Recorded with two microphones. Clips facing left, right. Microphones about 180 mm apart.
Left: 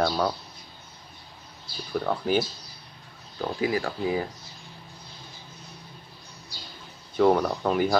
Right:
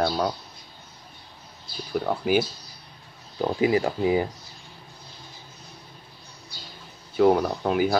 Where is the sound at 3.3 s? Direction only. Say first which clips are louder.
Right 5 dB; 20° right (ahead or behind).